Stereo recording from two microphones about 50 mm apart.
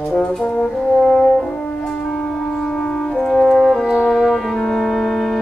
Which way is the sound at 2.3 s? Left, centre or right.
Centre.